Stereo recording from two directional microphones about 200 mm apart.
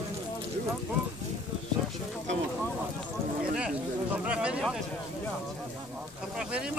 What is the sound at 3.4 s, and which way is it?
Speech, 5° right (ahead or behind).